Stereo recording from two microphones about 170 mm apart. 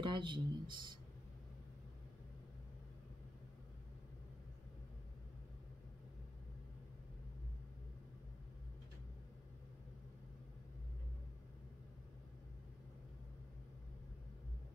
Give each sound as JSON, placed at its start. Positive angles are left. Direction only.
{"t": 0.0, "sound": "speech", "side_deg": -30}